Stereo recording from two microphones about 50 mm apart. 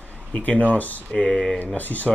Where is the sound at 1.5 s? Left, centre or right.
Left.